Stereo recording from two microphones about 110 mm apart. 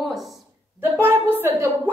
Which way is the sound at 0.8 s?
20° right (ahead or behind).